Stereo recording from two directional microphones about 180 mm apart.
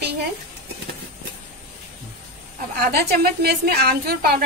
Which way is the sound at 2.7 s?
60° right (ahead or behind).